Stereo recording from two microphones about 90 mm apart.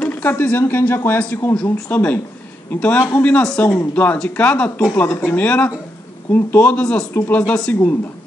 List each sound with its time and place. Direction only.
0.0 s a man's voice: 20° left (ahead or behind)